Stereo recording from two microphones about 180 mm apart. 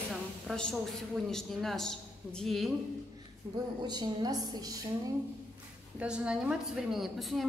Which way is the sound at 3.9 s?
20° right (ahead or behind).